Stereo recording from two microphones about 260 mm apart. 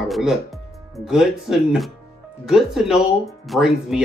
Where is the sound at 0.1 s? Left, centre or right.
Centre.